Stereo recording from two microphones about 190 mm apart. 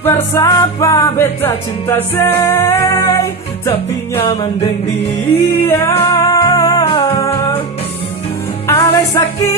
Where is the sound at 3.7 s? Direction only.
25° left (ahead or behind).